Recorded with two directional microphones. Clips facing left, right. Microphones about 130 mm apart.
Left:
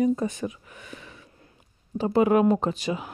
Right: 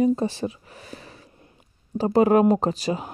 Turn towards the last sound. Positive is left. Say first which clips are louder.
# right 3 dB
turn(degrees=-35)  # may be behind; listen again after turning